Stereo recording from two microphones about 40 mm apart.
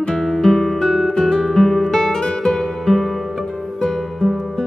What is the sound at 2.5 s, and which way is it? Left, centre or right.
Music, centre.